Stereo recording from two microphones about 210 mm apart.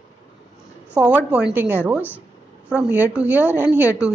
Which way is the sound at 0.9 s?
5° right (ahead or behind).